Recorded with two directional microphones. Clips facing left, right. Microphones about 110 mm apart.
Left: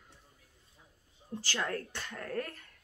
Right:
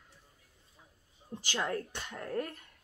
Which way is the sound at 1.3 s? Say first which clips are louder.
Right 1 dB; 20° right (ahead or behind).